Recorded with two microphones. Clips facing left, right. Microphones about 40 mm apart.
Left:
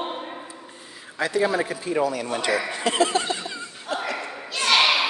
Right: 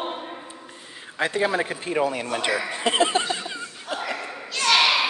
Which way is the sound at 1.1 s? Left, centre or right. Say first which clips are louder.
Left 1 dB; right.